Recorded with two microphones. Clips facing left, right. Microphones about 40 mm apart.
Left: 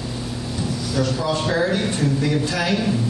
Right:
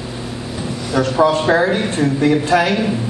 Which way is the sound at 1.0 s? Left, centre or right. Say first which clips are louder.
Right 9 dB; right.